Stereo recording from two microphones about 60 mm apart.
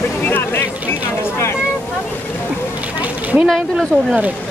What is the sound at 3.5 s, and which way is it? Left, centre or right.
Speech, centre.